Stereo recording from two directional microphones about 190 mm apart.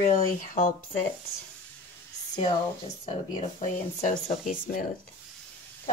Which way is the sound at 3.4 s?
35° left (ahead or behind).